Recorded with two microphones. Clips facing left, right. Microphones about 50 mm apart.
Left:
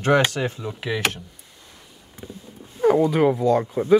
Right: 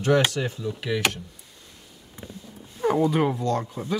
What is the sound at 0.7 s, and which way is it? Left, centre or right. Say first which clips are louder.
Speech: even; left.